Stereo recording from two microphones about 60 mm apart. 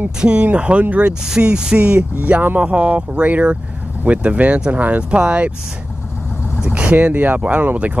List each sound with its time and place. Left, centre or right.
0.2 s speech: centre
6.6 s speech: right